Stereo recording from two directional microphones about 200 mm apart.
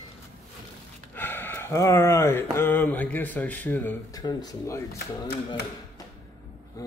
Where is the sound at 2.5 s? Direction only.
10° left (ahead or behind).